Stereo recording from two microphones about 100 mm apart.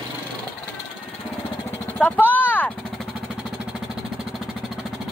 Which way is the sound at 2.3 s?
15° left (ahead or behind).